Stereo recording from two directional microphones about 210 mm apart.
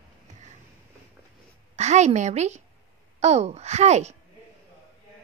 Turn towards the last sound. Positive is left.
turn(degrees=-30)  # may be behind; listen again after turning